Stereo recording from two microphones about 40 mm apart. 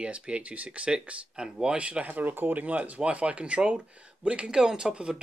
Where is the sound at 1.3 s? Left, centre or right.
Centre.